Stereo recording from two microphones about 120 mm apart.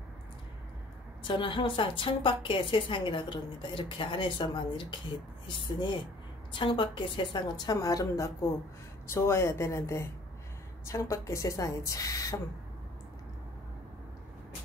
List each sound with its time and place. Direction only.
1.2 s a woman's voice: 45° left (ahead or behind); by 12.4 s 30° left (ahead or behind)